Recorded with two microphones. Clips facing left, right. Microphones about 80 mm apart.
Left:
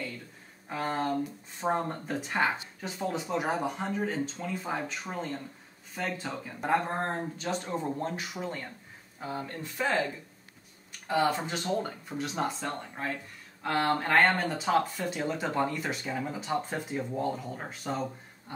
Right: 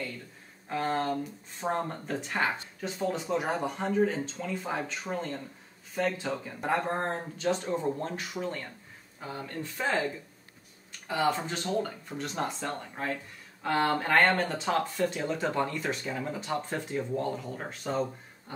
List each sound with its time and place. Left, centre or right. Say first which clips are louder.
0.7 s speech: right 1 dB; centre
11.2 s speech: even; centre